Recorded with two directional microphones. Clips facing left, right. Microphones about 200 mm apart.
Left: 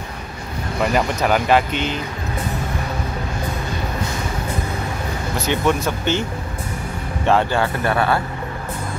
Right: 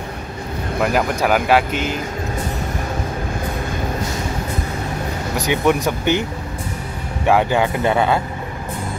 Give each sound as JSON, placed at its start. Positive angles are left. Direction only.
{"t": 0.7, "sound": "speech", "side_deg": -5}
{"t": 5.4, "sound": "speech", "side_deg": -15}
{"t": 7.2, "sound": "speech", "side_deg": -15}